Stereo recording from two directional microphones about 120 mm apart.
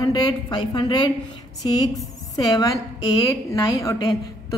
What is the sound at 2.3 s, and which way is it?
A woman's voice, 30° left (ahead or behind).